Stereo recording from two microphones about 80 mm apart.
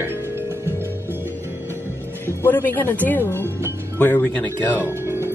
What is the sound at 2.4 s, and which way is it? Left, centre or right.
Speech, left.